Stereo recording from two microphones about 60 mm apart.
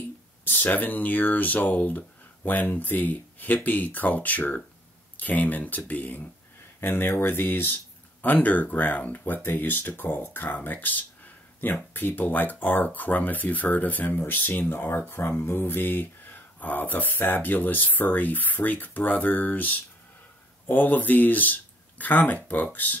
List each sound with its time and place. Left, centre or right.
0.5 s speech: left
6.8 s speech: left